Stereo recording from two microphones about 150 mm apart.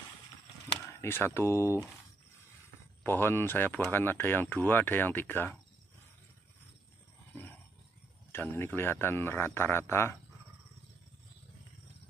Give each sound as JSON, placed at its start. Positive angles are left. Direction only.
{"t": 1.0, "sound": "speech", "side_deg": 15}
{"t": 3.0, "sound": "speech", "side_deg": 15}
{"t": 8.3, "sound": "speech", "side_deg": 15}